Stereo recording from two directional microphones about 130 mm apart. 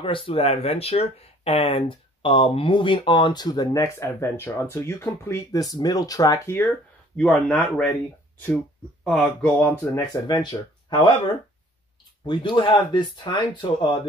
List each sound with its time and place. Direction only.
0.0 s speech: 45° left (ahead or behind); by 6.7 s 20° left (ahead or behind)
7.2 s speech: 5° left (ahead or behind)
9.0 s speech: 5° left (ahead or behind)
9.9 s speech: 30° left (ahead or behind)
12.3 s speech: 35° left (ahead or behind)